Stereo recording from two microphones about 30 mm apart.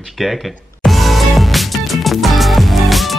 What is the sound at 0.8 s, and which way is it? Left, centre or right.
Music, centre.